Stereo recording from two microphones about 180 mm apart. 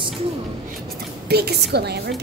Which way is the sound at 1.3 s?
65° right (ahead or behind).